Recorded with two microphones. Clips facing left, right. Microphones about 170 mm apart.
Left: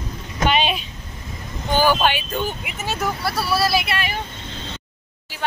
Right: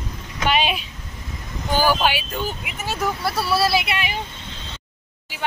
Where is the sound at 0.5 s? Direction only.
5° right (ahead or behind).